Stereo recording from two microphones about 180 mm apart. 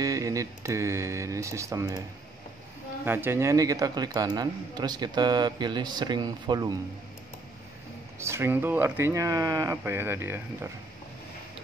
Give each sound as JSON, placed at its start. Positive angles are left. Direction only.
{"t": 0.0, "sound": "speech", "side_deg": -20}
{"t": 3.1, "sound": "a man's voice", "side_deg": -10}
{"t": 8.2, "sound": "speech", "side_deg": -15}